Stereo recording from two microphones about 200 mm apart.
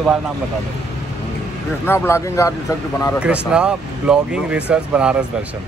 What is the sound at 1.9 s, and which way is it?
Speech, 10° left (ahead or behind).